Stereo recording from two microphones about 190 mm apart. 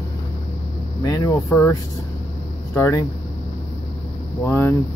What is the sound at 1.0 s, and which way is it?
Speech, 20° left (ahead or behind).